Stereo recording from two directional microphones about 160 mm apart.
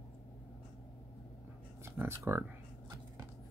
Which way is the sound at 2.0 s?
15° right (ahead or behind).